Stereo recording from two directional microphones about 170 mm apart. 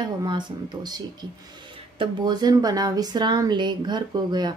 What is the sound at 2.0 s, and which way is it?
Speech, 25° right (ahead or behind).